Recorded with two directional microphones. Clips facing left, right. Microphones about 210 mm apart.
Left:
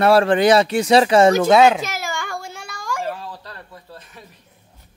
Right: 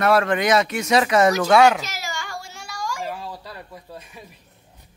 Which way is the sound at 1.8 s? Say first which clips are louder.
Left 5 dB; 55° left (ahead or behind).